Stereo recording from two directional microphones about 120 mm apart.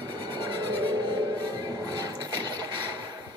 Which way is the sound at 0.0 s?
40° right (ahead or behind).